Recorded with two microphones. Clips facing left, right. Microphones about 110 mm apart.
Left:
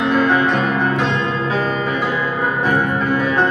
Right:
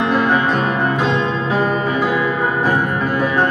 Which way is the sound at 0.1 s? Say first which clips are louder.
Left 2 dB; 10° right (ahead or behind).